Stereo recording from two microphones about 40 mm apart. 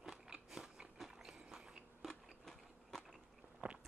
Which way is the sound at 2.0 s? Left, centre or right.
Centre.